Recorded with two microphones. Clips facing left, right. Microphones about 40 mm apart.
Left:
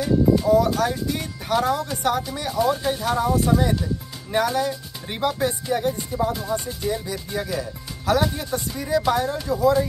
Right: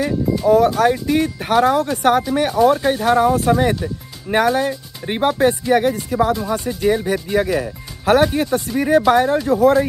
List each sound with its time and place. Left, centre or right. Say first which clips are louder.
0.4 s speech: right 5 dB; right
5.4 s music: right 8 dB; right
6.5 s speech: right 7 dB; right